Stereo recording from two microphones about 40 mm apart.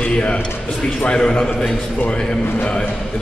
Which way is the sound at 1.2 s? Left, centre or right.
Centre.